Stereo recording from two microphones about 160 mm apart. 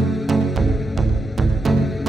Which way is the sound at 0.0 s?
Centre (ahead or behind).